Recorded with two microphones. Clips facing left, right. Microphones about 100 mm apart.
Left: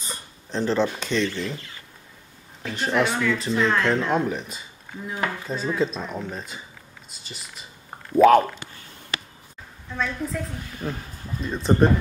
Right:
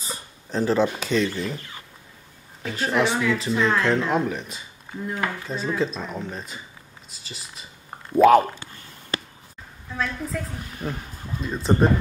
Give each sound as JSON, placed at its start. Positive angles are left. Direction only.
{"t": 0.0, "sound": "a sound", "side_deg": -5}
{"t": 2.6, "sound": "speech", "side_deg": 0}
{"t": 9.9, "sound": "speech", "side_deg": 0}
{"t": 10.8, "sound": "speech", "side_deg": -20}
{"t": 11.4, "sound": "speech", "side_deg": 0}